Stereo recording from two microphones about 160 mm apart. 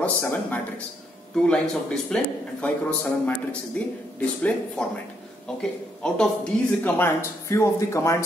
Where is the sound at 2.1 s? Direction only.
10° left (ahead or behind).